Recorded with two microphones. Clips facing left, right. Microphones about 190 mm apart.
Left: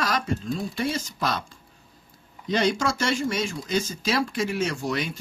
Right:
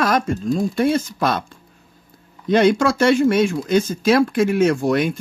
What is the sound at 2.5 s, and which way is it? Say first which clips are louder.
Speech: right 9 dB; 55° right (ahead or behind).